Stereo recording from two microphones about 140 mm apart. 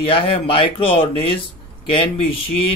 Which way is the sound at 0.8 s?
40° left (ahead or behind).